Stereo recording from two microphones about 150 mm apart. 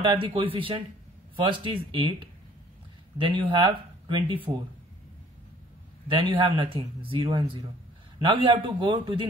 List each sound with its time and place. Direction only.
0.0 s a man's voice: 35° right (ahead or behind)
6.1 s a man's voice: 35° right (ahead or behind)